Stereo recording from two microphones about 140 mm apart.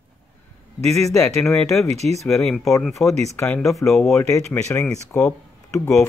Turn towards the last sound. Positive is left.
turn(degrees=20)  # may be behind; listen again after turning